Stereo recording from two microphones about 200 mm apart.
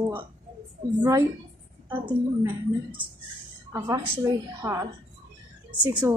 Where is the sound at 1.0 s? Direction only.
15° right (ahead or behind).